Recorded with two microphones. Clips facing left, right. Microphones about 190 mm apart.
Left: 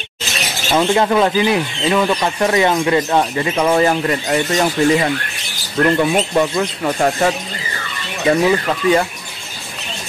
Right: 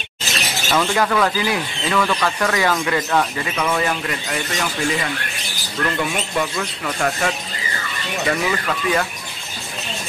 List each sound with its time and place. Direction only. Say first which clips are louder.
0.7 s speech: left 5 dB; 25° left (ahead or behind)